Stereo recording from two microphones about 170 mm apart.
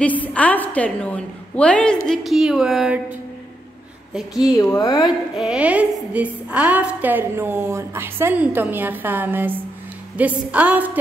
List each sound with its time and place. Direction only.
0.0 s a woman's voice: 10° left (ahead or behind)
4.6 s speech: 20° left (ahead or behind)
5.3 s a woman's voice: 5° right (ahead or behind)